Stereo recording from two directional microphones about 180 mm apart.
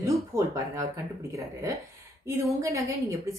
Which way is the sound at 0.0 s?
15° right (ahead or behind).